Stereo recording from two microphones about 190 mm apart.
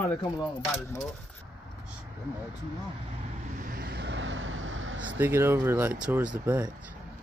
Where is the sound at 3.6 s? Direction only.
50° right (ahead or behind); by 5.0 s 90° right.